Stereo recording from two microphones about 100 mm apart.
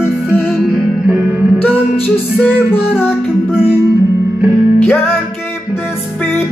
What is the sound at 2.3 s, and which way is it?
Music, 15° left (ahead or behind).